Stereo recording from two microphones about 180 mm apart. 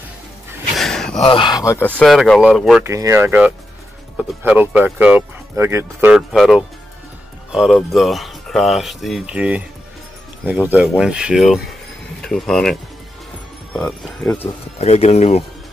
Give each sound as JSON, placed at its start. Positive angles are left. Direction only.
{"t": 0.7, "sound": "a sound", "side_deg": 0}
{"t": 1.2, "sound": "speech", "side_deg": 30}
{"t": 2.8, "sound": "speech", "side_deg": -15}
{"t": 6.1, "sound": "speech", "side_deg": 0}
{"t": 13.7, "sound": "speech", "side_deg": 5}
{"t": 14.8, "sound": "speech", "side_deg": 35}